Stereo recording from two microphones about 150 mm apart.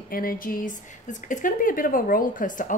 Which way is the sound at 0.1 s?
70° left (ahead or behind).